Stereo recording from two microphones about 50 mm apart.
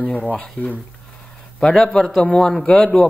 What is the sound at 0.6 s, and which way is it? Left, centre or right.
Speech, left.